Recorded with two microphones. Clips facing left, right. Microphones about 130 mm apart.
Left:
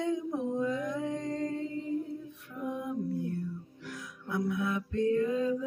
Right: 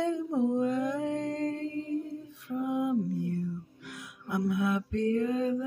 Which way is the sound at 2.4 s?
80° right.